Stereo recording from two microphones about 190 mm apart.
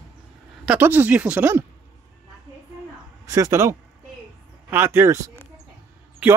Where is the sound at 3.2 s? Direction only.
15° right (ahead or behind).